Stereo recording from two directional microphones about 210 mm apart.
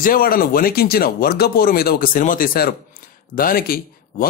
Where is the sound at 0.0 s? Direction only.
45° left (ahead or behind).